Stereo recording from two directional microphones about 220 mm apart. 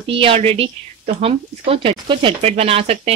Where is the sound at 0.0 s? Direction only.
25° right (ahead or behind).